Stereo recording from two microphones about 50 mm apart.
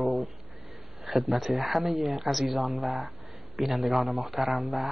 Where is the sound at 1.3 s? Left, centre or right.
Centre.